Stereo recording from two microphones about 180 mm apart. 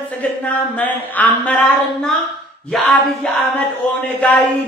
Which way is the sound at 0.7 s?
10° left (ahead or behind).